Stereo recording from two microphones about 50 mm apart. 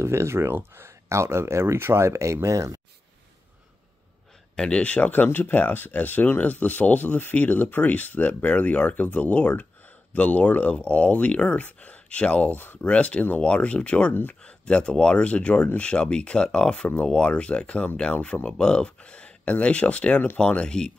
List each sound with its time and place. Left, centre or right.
0.0 s speech: right
2.4 s speech: right
4.6 s speech: left